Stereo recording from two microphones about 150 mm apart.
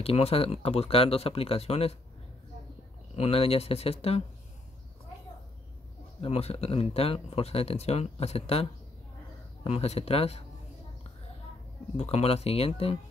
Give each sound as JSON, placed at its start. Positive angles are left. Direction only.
{"t": 0.0, "sound": "speech", "side_deg": 40}
{"t": 3.2, "sound": "speech", "side_deg": 40}
{"t": 6.2, "sound": "speech", "side_deg": 40}
{"t": 12.0, "sound": "speech", "side_deg": 45}